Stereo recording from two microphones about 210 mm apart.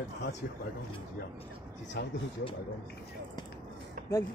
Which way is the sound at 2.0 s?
50° left (ahead or behind).